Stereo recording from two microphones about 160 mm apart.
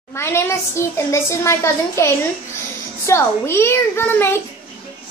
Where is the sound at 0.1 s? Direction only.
15° left (ahead or behind).